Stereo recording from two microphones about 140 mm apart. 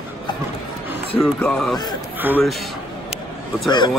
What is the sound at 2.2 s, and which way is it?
Speech, 15° right (ahead or behind).